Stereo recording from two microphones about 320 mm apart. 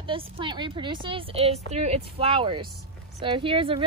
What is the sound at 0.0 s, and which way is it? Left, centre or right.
A woman's voice, centre.